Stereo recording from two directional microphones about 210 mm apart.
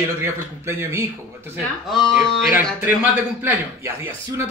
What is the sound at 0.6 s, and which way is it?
A man's voice, 15° right (ahead or behind).